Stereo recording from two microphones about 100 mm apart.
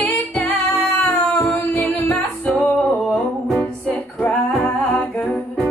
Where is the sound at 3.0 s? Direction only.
5° left (ahead or behind).